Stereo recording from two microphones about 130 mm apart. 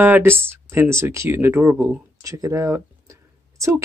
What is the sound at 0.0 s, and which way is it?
Speech, 15° right (ahead or behind).